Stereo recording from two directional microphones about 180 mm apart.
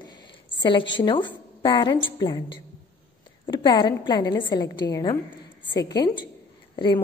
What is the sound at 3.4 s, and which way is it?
A woman's voice, 25° left (ahead or behind).